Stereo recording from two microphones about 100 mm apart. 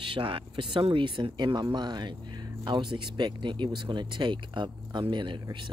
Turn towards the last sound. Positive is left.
turn(degrees=-50)  # may be behind; listen again after turning